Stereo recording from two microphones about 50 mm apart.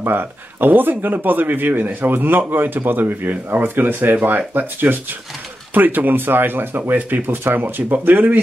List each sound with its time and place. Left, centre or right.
0.0 s speech: right